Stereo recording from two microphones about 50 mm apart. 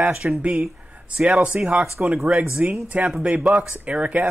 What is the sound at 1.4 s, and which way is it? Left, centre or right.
Speech, right.